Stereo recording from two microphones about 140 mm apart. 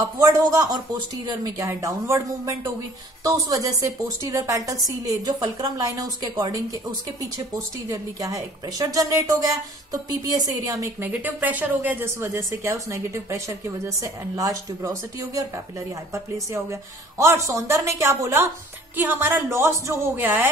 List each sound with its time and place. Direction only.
0.2 s a woman's voice: 25° right (ahead or behind)